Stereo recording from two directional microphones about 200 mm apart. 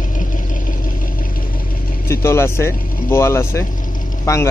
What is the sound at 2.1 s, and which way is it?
Speech, 15° left (ahead or behind).